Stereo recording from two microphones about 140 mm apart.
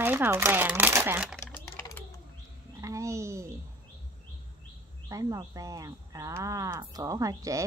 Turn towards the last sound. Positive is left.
turn(degrees=-25)  # may be behind; listen again after turning